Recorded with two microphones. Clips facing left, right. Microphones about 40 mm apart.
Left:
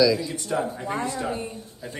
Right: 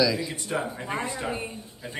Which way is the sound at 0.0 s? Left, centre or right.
Centre.